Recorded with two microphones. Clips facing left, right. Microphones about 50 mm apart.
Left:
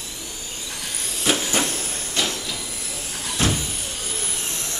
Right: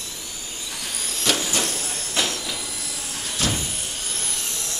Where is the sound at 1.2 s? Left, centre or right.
Centre.